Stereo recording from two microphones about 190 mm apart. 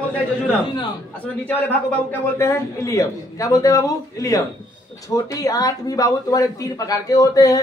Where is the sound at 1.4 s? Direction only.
10° left (ahead or behind).